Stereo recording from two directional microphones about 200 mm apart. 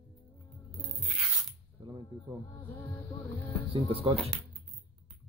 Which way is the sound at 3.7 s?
30° right (ahead or behind).